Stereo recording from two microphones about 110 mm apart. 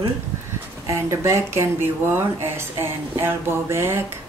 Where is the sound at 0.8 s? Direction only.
25° right (ahead or behind).